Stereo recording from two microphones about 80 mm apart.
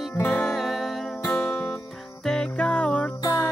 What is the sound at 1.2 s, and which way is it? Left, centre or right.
Music, left.